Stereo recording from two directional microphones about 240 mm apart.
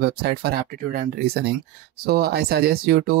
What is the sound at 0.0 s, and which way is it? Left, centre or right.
Speech, right.